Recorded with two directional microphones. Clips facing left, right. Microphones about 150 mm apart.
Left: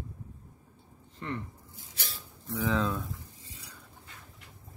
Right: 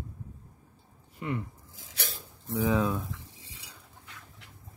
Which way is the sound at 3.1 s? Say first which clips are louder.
Right 1 dB; 90° right.